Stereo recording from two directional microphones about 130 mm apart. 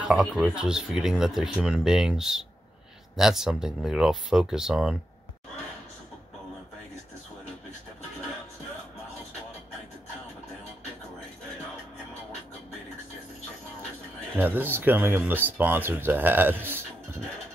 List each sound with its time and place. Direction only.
0.0 s speech: 5° right (ahead or behind)
14.3 s speech: 15° right (ahead or behind)